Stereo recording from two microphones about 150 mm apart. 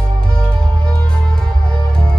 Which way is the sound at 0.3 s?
5° left (ahead or behind).